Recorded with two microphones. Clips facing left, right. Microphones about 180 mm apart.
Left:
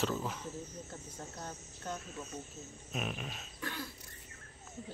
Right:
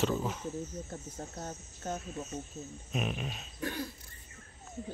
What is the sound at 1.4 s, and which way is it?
Speech, 20° right (ahead or behind).